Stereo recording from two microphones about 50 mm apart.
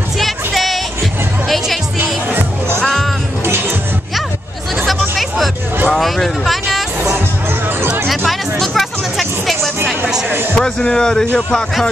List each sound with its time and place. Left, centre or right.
0.2 s music: centre
2.8 s music: centre
5.9 s a sound: centre
8.3 s music: centre
10.6 s a man's voice: centre